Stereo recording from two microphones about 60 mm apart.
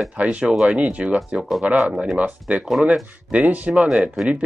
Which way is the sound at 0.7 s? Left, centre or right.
Right.